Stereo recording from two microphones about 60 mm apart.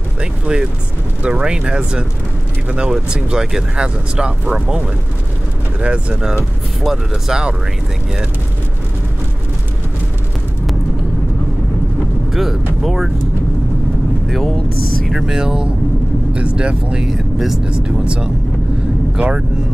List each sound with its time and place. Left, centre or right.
0.2 s speech: centre
5.8 s speech: centre
6.8 s speech: centre
12.3 s speech: centre
14.2 s speech: centre
17.1 s speech: centre
17.6 s speech: centre